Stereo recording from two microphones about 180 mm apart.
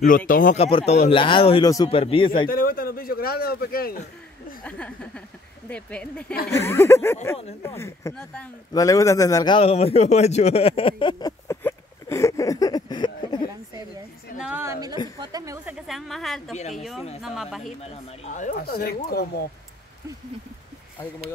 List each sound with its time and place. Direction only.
0.3 s speech: 50° left (ahead or behind)
0.6 s speech: 30° left (ahead or behind)
2.5 s a man's voice: 55° left (ahead or behind)
4.6 s speech: 5° left (ahead or behind)
8.1 s speech: 5° left (ahead or behind)
8.7 s a man's voice: 20° left (ahead or behind)
14.4 s a woman's voice: 10° right (ahead or behind)
15.9 s speech: centre (ahead or behind)
18.2 s speech: 40° left (ahead or behind)
18.6 s a man's voice: 60° left (ahead or behind)